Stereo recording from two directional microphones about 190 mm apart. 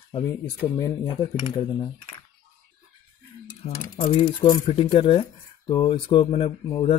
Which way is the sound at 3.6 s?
35° left (ahead or behind).